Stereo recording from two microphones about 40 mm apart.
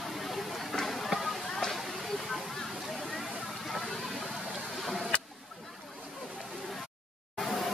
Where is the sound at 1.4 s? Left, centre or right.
Centre.